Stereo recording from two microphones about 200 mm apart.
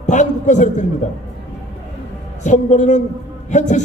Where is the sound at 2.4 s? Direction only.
40° left (ahead or behind).